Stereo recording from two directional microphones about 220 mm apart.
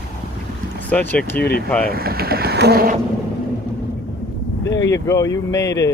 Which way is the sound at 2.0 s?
45° right (ahead or behind).